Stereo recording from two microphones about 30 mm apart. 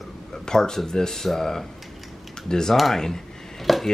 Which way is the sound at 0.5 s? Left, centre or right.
Left.